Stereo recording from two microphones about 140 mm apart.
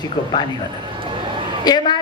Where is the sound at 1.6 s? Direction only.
30° left (ahead or behind).